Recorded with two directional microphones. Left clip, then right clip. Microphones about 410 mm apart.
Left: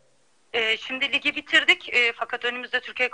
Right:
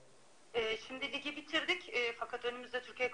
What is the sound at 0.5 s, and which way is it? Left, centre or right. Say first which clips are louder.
Speech: left 13 dB; left.